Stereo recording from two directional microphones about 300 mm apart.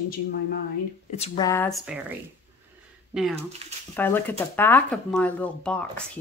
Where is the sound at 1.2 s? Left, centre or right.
Centre.